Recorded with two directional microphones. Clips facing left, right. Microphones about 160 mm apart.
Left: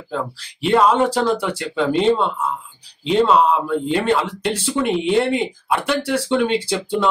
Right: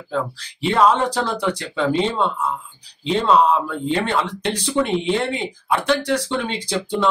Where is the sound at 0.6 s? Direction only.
5° left (ahead or behind).